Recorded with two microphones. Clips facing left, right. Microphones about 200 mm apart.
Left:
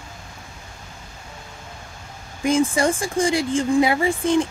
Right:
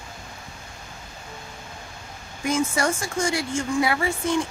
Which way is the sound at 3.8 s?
20° left (ahead or behind).